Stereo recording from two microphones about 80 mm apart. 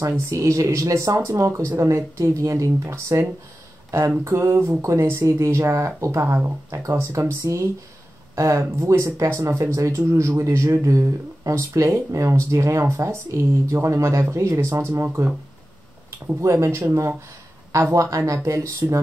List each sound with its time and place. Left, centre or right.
0.3 s speech: right
16.3 s speech: right
18.1 s speech: right